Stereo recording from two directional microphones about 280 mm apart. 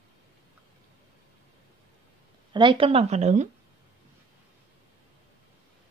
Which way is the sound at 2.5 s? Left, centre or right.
Centre.